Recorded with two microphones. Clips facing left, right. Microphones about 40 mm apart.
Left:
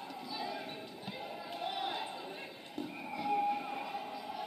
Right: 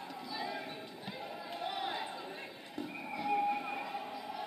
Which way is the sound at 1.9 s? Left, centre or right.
Centre.